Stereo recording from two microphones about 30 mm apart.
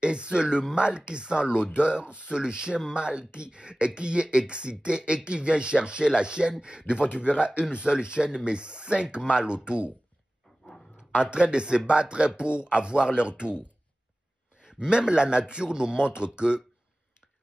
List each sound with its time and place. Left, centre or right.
0.0 s speech: right
11.1 s speech: right
14.6 s a man's voice: right